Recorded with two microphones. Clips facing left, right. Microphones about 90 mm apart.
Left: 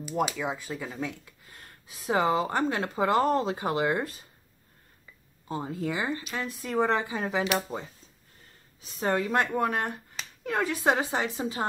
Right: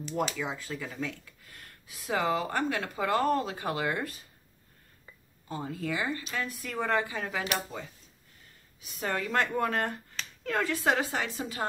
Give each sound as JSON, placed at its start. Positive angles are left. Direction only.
{"t": 0.2, "sound": "speech", "side_deg": 15}
{"t": 5.5, "sound": "speech", "side_deg": 25}
{"t": 7.7, "sound": "speech", "side_deg": 35}
{"t": 9.0, "sound": "speech", "side_deg": 25}